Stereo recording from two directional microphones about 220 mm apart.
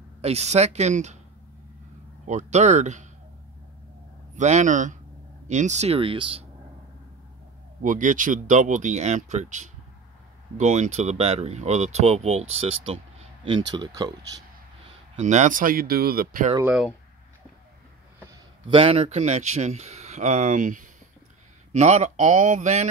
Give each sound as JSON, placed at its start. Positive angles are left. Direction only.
{"t": 0.2, "sound": "speech", "side_deg": -30}
{"t": 2.2, "sound": "speech", "side_deg": -30}
{"t": 4.4, "sound": "speech", "side_deg": -30}
{"t": 7.8, "sound": "speech", "side_deg": -35}
{"t": 15.1, "sound": "speech", "side_deg": -30}
{"t": 16.5, "sound": "speech", "side_deg": -5}
{"t": 18.7, "sound": "speech", "side_deg": -25}